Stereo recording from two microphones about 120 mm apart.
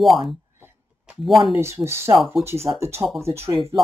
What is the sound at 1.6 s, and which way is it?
Speech, 20° right (ahead or behind).